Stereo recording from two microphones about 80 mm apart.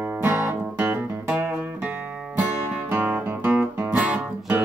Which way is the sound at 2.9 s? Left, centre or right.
Right.